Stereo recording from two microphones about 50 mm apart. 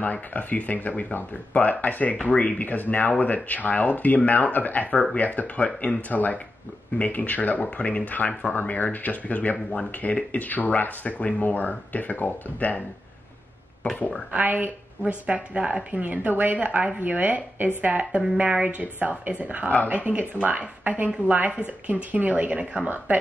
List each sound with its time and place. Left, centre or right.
0.0 s speech: left
14.3 s a woman's voice: right
16.0 s a woman's voice: right